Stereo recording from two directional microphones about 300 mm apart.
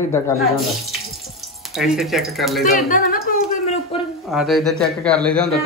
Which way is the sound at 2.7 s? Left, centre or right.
Left.